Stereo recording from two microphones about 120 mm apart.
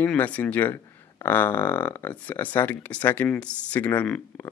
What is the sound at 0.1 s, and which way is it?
Speech, 15° left (ahead or behind).